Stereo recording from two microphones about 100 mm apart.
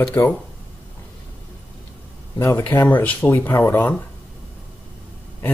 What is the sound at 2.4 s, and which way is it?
Speech, 20° left (ahead or behind).